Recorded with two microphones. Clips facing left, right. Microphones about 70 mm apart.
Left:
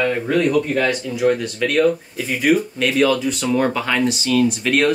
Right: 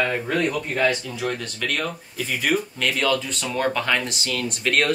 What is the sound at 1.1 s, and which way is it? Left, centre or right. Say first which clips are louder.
Speech: left 9 dB; centre.